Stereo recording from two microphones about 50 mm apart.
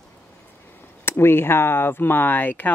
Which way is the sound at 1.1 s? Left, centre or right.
Left.